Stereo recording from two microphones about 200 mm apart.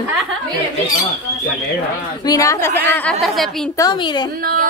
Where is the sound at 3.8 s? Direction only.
20° left (ahead or behind).